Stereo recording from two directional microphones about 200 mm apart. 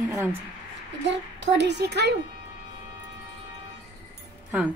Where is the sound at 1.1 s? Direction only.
60° right (ahead or behind).